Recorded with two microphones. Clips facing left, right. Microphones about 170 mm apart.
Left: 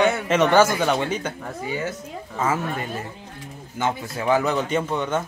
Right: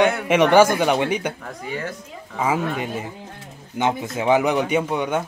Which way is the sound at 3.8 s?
20° right (ahead or behind).